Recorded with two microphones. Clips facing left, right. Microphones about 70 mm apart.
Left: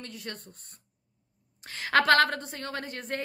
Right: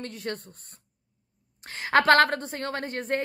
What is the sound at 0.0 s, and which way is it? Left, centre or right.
Speech, right.